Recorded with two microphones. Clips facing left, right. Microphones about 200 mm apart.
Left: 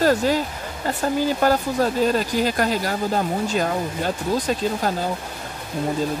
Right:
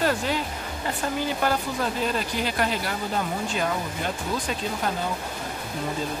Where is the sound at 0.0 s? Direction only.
40° left (ahead or behind).